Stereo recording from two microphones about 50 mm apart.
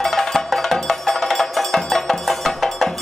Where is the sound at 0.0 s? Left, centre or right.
Centre.